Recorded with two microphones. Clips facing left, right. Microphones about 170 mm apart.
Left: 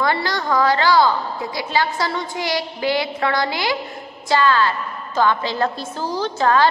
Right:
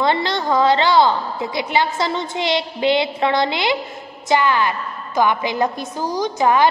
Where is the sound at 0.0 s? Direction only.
20° right (ahead or behind).